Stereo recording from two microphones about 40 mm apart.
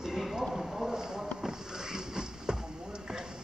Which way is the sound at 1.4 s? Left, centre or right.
Centre.